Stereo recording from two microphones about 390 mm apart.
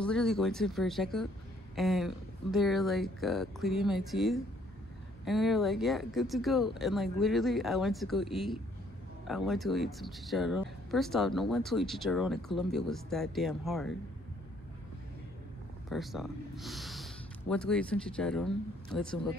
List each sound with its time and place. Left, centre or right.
0.0 s speech: centre
15.9 s speech: centre